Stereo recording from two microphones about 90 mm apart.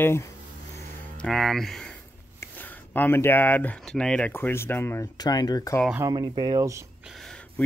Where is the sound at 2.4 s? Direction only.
20° left (ahead or behind).